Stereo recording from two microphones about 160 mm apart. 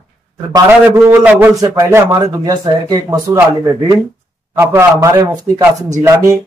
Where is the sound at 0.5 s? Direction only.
15° right (ahead or behind).